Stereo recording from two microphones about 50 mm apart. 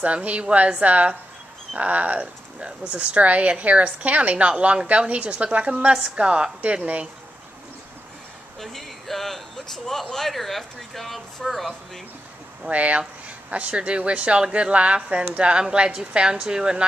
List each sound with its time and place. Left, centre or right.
0.0 s speech: right
8.5 s speech: centre
12.6 s speech: right